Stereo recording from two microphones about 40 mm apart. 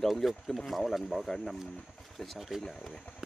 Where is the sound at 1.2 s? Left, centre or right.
Centre.